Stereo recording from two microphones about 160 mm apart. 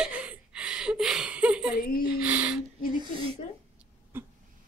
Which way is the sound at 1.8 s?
65° left (ahead or behind).